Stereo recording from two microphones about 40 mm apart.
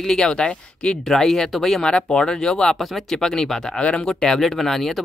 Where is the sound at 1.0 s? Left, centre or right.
Centre.